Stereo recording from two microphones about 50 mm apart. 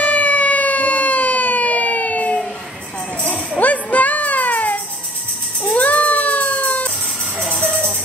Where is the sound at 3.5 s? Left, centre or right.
Left.